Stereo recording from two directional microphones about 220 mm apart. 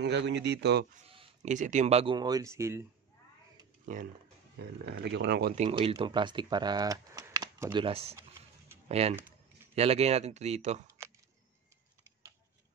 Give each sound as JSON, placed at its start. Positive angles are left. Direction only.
{"t": 0.0, "sound": "speech", "side_deg": -50}
{"t": 0.9, "sound": "speech", "side_deg": -25}
{"t": 3.8, "sound": "speech", "side_deg": -35}
{"t": 4.6, "sound": "speech", "side_deg": -50}
{"t": 5.6, "sound": "speech", "side_deg": -25}